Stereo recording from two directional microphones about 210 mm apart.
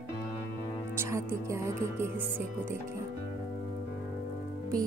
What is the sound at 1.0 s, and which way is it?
Speech, 10° right (ahead or behind).